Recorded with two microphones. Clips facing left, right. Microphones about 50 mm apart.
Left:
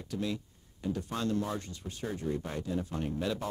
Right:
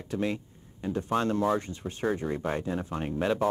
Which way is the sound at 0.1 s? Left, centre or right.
Right.